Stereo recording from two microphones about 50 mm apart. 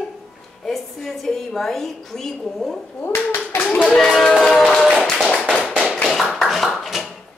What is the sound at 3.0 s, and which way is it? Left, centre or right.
Speech, left.